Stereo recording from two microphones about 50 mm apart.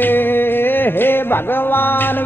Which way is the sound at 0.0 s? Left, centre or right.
Left.